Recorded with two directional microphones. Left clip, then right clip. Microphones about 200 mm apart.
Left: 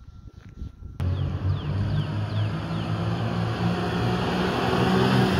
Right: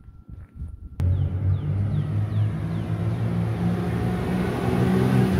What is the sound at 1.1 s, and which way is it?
Vehicle, 25° right (ahead or behind).